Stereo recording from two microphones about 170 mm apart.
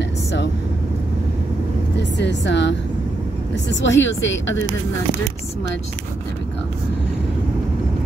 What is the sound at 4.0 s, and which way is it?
Speech, 90° left.